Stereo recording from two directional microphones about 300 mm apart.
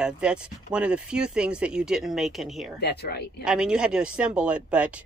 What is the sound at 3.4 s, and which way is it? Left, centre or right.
Speech, centre.